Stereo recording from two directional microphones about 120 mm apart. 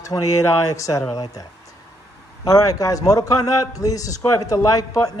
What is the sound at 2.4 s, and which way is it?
A man's voice, 30° left (ahead or behind).